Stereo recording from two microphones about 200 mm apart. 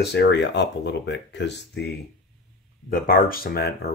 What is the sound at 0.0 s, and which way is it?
Speech, 55° left (ahead or behind).